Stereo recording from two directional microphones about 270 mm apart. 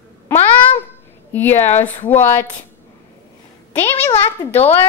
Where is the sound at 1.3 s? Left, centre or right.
Centre.